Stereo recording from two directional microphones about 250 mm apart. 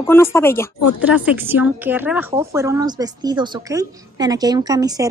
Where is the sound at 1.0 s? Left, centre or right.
Centre.